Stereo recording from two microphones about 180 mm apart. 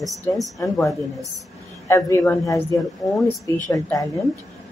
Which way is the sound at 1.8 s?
15° left (ahead or behind).